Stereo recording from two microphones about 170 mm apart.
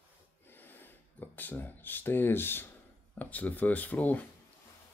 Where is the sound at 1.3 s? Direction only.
10° left (ahead or behind).